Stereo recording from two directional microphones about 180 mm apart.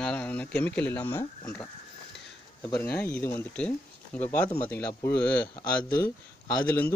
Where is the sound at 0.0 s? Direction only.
5° left (ahead or behind).